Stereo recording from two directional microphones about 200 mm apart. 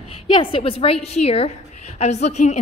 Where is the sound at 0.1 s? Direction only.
25° left (ahead or behind).